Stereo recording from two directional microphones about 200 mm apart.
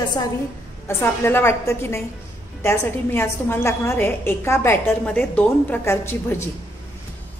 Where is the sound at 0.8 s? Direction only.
10° left (ahead or behind).